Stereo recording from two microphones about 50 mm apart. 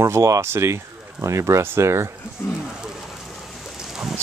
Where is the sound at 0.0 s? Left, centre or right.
Right.